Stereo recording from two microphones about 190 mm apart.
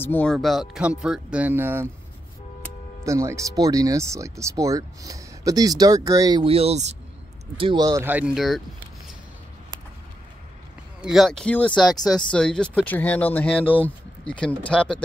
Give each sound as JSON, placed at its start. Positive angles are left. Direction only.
{"t": 0.0, "sound": "speech", "side_deg": 10}
{"t": 3.1, "sound": "speech", "side_deg": -15}
{"t": 7.5, "sound": "speech", "side_deg": -25}
{"t": 8.4, "sound": "a sound", "side_deg": 0}
{"t": 11.0, "sound": "speech", "side_deg": 0}